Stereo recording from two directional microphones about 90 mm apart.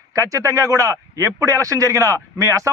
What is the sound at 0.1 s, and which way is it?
A man's voice, 35° right (ahead or behind).